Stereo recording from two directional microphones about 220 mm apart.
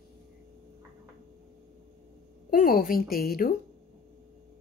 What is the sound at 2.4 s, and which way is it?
Speech, 40° left (ahead or behind).